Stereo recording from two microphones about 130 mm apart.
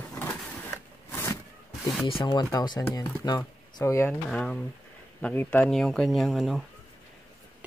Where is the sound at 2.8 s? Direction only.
20° left (ahead or behind).